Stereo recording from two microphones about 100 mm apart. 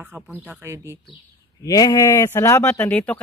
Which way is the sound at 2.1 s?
30° left (ahead or behind).